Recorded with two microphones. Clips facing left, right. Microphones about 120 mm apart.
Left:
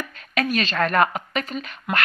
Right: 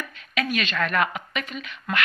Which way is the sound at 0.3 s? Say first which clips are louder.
Left 3 dB; 40° left (ahead or behind).